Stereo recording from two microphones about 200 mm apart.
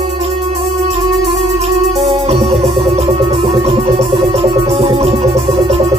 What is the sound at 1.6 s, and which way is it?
Music, 30° right (ahead or behind).